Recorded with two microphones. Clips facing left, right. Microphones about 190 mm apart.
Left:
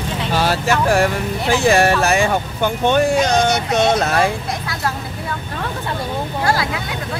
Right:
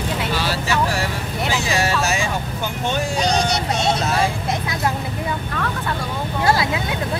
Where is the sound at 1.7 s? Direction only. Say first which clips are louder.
Left 8 dB; 60° left (ahead or behind).